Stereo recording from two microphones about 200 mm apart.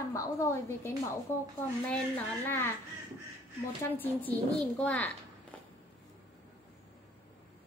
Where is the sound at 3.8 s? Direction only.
10° left (ahead or behind).